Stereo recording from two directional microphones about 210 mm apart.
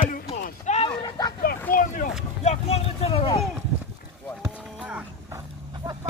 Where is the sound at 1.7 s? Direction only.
40° left (ahead or behind).